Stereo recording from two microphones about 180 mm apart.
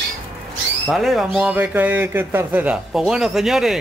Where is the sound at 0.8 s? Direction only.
Centre (ahead or behind).